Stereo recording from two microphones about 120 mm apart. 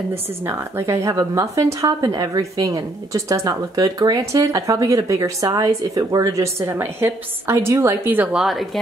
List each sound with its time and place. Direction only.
0.5 s a woman's voice: 20° right (ahead or behind)
8.4 s a woman's voice: centre (ahead or behind)